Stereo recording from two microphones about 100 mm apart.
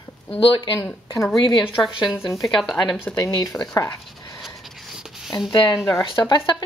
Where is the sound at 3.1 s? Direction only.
35° left (ahead or behind).